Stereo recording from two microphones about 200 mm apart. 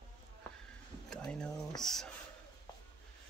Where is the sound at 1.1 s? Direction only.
5° left (ahead or behind).